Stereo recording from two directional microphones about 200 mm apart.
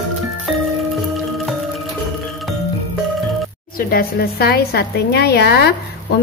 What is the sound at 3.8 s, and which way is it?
A woman's voice, 50° left (ahead or behind).